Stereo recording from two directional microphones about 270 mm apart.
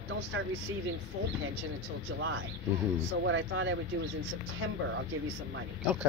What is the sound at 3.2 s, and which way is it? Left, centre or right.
Speech, right.